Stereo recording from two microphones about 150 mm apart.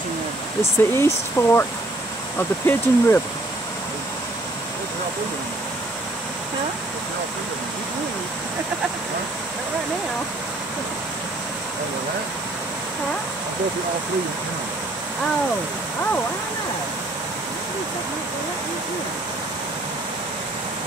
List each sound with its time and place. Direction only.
0.6 s speech: 20° left (ahead or behind)